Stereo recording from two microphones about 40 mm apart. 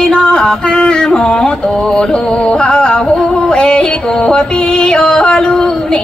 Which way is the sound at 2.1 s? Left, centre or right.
Left.